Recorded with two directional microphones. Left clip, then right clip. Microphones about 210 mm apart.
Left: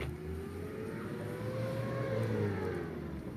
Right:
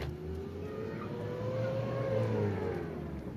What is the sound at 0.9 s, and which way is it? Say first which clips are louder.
Vehicle: right 2 dB; 35° right (ahead or behind).